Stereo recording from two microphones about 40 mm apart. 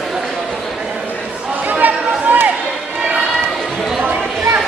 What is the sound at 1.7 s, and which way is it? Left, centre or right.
Chatter, right.